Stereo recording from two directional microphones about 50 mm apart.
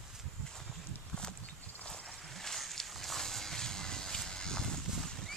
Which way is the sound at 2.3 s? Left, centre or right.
Centre.